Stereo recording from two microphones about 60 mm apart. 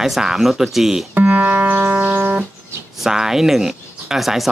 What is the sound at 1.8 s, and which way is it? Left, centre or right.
Music, right.